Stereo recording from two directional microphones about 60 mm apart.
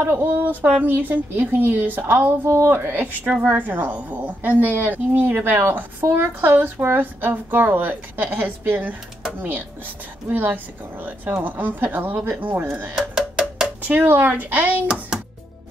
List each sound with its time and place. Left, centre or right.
0.0 s a woman's voice: right
0.3 s a woman's voice: right
10.3 s a woman's voice: right
12.9 s a sound: centre
13.8 s speech: right